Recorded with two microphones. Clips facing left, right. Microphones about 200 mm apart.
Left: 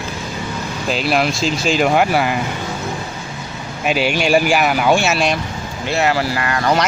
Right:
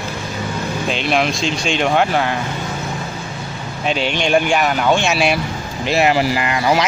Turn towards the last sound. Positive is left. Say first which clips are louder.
# right 1 dB
turn(degrees=-10)  # may be behind; listen again after turning